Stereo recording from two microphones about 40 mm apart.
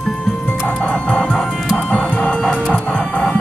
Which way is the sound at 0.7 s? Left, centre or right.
Left.